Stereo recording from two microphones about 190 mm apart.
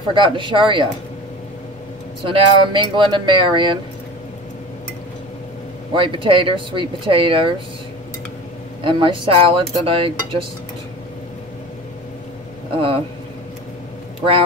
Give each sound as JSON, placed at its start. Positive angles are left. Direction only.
{"t": 0.1, "sound": "speech", "side_deg": -25}
{"t": 2.2, "sound": "speech", "side_deg": -25}
{"t": 5.9, "sound": "speech", "side_deg": -25}
{"t": 8.8, "sound": "speech", "side_deg": -25}
{"t": 12.7, "sound": "speech", "side_deg": -30}